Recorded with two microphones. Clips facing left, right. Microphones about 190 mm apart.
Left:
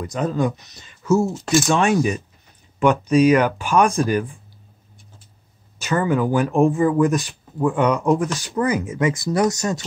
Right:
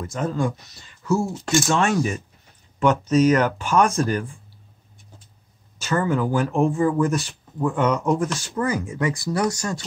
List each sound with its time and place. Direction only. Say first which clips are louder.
0.0 s speech: left 3 dB; 15° left (ahead or behind)
1.3 s speech: left 3 dB; 5° left (ahead or behind)
1.7 s speech: left 3 dB; 15° left (ahead or behind)
5.8 s speech: left 2 dB; 15° left (ahead or behind)